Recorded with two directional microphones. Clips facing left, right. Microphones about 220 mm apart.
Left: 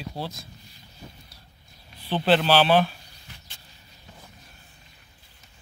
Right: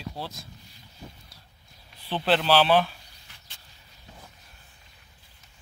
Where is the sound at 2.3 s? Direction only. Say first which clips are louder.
Left 2 dB; 15° left (ahead or behind).